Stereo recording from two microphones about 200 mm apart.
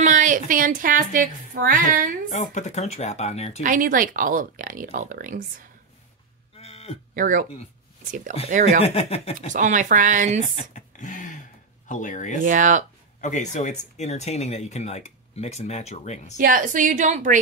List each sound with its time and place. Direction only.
0.0 s speech: 40° right (ahead or behind)
2.2 s speech: 40° left (ahead or behind)
3.6 s speech: 40° right (ahead or behind)
6.6 s a sound: 30° left (ahead or behind)
7.2 s a woman's voice: 40° right (ahead or behind)
8.8 s speech: 30° left (ahead or behind)
9.5 s a woman's voice: 40° right (ahead or behind)
10.5 s a sound: 35° left (ahead or behind)
11.9 s speech: 40° left (ahead or behind)
12.4 s a woman's voice: 40° right (ahead or behind)
13.2 s speech: 35° left (ahead or behind)
16.3 s a woman's voice: 45° right (ahead or behind)